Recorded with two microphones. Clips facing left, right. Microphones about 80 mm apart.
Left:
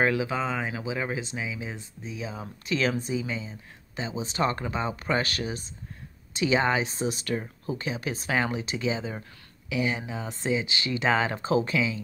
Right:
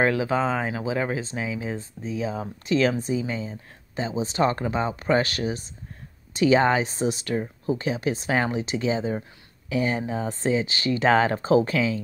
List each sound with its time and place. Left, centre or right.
0.0 s speech: right